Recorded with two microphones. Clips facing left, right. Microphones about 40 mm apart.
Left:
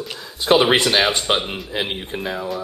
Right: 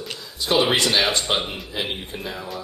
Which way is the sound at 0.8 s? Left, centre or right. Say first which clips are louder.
Left 3 dB; centre.